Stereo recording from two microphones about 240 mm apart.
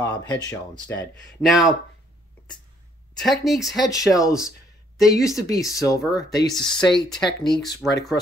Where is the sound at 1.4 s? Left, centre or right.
Centre.